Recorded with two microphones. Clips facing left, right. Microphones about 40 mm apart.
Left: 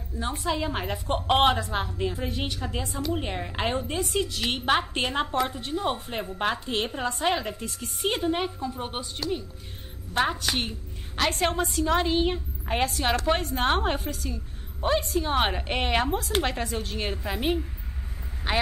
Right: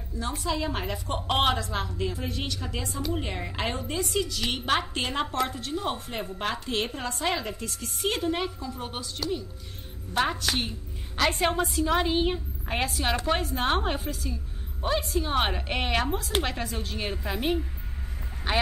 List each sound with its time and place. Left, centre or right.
0.2 s a woman's voice: left
4.4 s a woman's voice: centre
8.5 s a woman's voice: left
10.1 s a woman's voice: centre